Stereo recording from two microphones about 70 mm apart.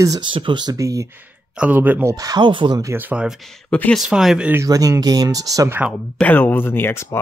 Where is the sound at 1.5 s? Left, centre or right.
Right.